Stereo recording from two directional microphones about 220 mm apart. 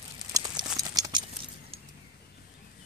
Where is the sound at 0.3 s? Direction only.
15° right (ahead or behind).